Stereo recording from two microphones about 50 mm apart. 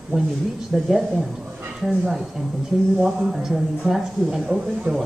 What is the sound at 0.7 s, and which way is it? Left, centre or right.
Speech, right.